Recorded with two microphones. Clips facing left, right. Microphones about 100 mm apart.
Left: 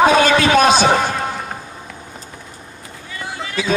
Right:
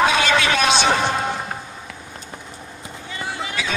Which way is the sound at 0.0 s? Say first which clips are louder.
Left 5 dB; 40° left (ahead or behind).